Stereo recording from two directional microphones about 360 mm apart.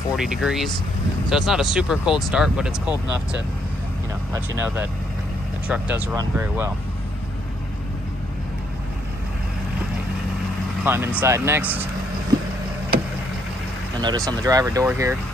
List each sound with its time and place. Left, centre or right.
0.1 s speech: centre
4.3 s speech: centre
10.8 s speech: centre
14.0 s speech: centre